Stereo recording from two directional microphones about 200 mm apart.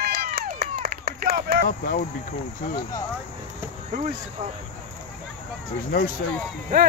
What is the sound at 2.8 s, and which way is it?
Speech, 20° left (ahead or behind).